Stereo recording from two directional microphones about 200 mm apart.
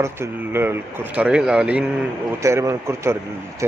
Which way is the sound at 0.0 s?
10° right (ahead or behind).